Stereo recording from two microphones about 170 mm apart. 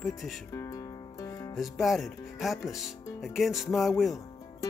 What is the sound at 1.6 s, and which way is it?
Speech, centre (ahead or behind).